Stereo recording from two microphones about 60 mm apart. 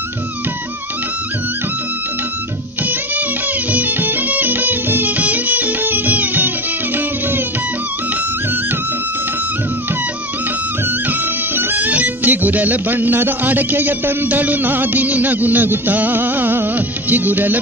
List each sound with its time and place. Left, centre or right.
3.7 s music: right
11.1 s music: right